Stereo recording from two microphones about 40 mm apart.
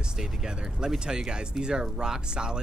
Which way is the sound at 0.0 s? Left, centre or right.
Centre.